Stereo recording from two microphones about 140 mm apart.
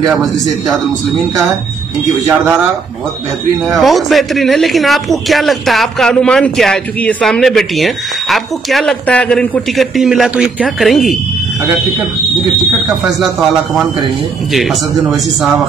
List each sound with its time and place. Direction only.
3.6 s speech: centre (ahead or behind)
12.8 s speech: centre (ahead or behind)